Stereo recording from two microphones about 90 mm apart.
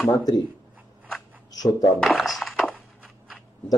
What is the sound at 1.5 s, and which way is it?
Speech, 45° left (ahead or behind).